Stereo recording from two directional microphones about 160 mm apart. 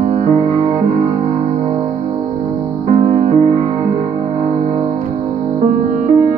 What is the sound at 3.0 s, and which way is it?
Music, 45° right (ahead or behind).